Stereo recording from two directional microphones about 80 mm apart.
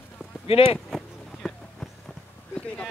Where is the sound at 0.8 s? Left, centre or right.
Centre.